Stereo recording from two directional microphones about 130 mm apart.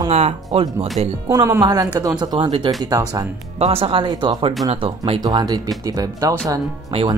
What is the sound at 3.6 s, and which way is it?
Speech, 50° right (ahead or behind).